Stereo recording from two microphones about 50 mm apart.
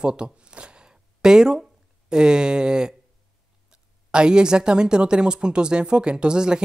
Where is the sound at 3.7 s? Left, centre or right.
Centre.